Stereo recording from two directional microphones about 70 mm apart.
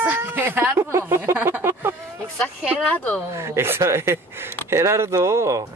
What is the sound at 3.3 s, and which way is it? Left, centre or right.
Speech, right.